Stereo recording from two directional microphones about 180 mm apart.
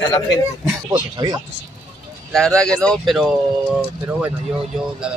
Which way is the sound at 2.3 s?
5° left (ahead or behind).